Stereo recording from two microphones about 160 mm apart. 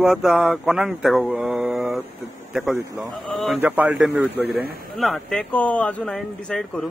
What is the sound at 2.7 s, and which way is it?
Speech, 20° right (ahead or behind).